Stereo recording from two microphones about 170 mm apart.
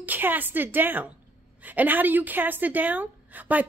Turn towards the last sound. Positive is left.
turn(degrees=-10)  # may be behind; listen again after turning